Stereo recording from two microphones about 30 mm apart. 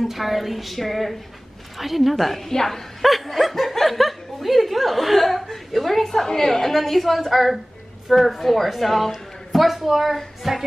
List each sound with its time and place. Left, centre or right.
0.0 s speech: centre
2.5 s a woman's voice: centre
3.0 s speech: centre